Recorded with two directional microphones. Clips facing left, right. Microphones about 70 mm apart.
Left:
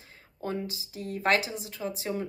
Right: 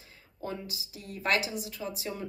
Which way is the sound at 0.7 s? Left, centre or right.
Left.